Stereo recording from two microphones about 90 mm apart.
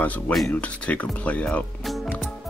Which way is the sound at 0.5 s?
15° left (ahead or behind).